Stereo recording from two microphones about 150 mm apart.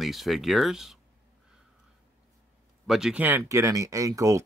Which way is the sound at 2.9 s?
5° right (ahead or behind).